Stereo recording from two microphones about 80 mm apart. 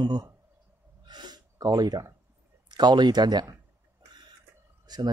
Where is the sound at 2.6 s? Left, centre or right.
Right.